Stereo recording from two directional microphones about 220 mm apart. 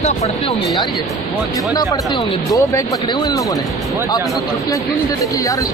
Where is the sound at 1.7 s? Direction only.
15° left (ahead or behind).